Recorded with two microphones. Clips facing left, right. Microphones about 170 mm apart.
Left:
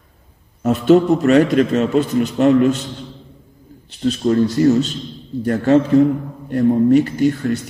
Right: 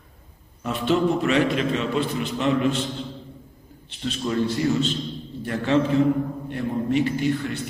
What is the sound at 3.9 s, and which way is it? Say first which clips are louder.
A man's voice: left 9 dB; 40° left (ahead or behind).